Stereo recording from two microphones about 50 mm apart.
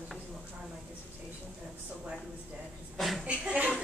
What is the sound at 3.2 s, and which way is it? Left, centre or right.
Speech, right.